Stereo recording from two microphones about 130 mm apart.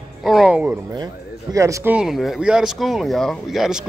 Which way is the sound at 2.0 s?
Centre (ahead or behind).